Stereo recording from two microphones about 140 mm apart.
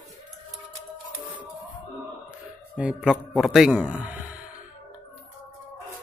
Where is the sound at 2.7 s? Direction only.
5° right (ahead or behind).